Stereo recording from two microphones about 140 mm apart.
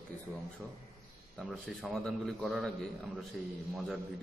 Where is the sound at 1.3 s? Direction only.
5° left (ahead or behind).